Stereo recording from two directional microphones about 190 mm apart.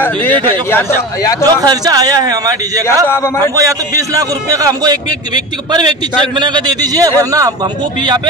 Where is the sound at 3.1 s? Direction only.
10° left (ahead or behind).